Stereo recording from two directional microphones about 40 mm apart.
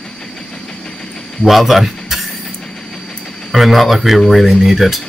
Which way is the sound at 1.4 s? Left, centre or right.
Centre.